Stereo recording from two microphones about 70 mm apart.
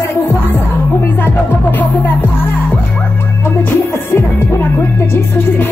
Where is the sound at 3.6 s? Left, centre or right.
Left.